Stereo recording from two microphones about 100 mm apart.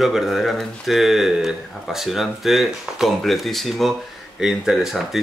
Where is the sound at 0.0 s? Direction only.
Centre (ahead or behind).